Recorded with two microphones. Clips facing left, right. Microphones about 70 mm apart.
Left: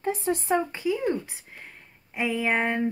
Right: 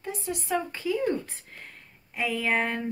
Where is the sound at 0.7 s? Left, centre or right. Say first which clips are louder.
Left 1 dB; centre.